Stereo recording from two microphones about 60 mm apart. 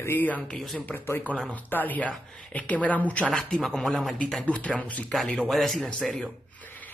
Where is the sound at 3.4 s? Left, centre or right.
Centre.